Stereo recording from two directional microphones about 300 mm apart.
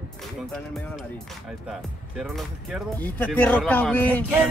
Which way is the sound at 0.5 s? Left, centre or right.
Centre.